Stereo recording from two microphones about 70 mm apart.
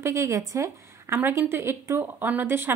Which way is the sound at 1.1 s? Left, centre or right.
Right.